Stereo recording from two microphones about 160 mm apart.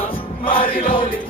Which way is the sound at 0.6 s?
35° left (ahead or behind).